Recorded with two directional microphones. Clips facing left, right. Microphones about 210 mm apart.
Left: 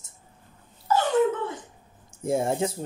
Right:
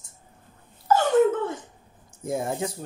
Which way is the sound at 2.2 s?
25° left (ahead or behind).